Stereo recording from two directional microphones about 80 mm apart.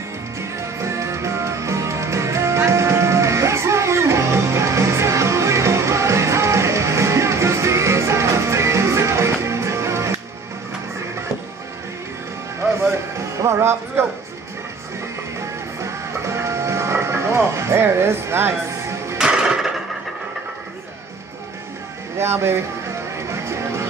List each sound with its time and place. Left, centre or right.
0.6 s music: right
12.7 s music: right
15.3 s music: right
19.1 s music: centre
22.2 s speech: right
23.1 s music: right